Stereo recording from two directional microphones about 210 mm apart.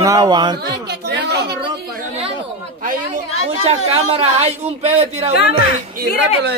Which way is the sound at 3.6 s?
30° right (ahead or behind).